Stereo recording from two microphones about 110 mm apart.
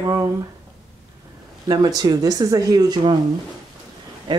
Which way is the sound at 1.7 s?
35° right (ahead or behind).